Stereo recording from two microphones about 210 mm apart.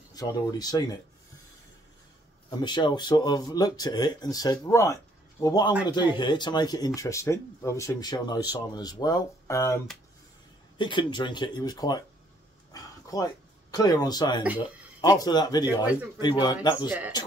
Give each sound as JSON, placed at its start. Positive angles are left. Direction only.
{"t": 0.1, "sound": "speech", "side_deg": 15}
{"t": 2.6, "sound": "speech", "side_deg": 20}
{"t": 10.8, "sound": "speech", "side_deg": 20}
{"t": 13.1, "sound": "speech", "side_deg": 15}
{"t": 15.8, "sound": "a man's voice", "side_deg": -5}
{"t": 16.2, "sound": "speech", "side_deg": 20}